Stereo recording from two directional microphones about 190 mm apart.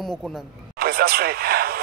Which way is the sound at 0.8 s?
55° right (ahead or behind).